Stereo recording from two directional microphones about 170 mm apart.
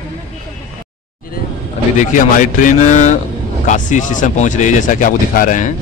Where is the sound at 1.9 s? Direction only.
45° left (ahead or behind).